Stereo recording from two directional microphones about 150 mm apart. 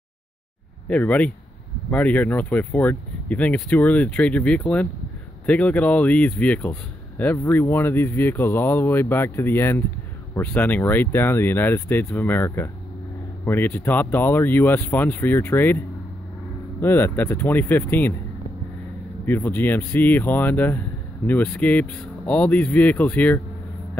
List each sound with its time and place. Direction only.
0.8 s speech: 10° left (ahead or behind)
16.8 s speech: 15° left (ahead or behind)
19.2 s speech: 15° left (ahead or behind)